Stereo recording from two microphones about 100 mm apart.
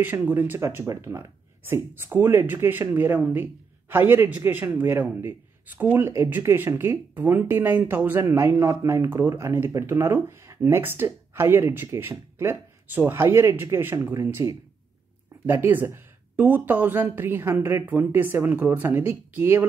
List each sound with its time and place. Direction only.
0.0 s a man's voice: 20° right (ahead or behind)